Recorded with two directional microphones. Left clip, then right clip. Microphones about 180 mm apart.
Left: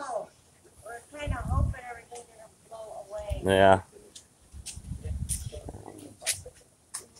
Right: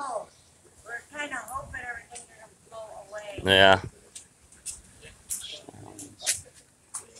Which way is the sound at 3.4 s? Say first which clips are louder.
Right 2 dB; 15° left (ahead or behind).